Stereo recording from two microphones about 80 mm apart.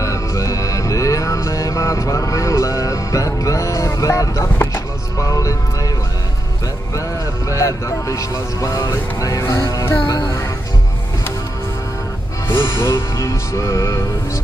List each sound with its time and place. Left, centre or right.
0.0 s music: left
5.3 s speech: left
7.4 s speech: left
10.0 s music: left
12.4 s speech: left